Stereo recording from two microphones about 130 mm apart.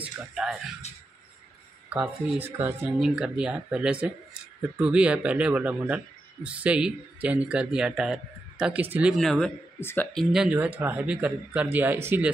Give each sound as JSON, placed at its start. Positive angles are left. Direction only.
{"t": 0.3, "sound": "speech", "side_deg": -5}
{"t": 1.9, "sound": "speech", "side_deg": -10}
{"t": 9.1, "sound": "speech", "side_deg": 5}
{"t": 9.8, "sound": "speech", "side_deg": 15}
{"t": 10.1, "sound": "speech", "side_deg": -5}